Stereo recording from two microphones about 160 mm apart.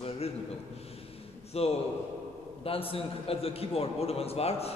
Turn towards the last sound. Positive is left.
turn(degrees=40)  # may be behind; listen again after turning